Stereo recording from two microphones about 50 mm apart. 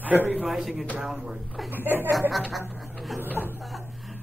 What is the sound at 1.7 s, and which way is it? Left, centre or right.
Speech, right.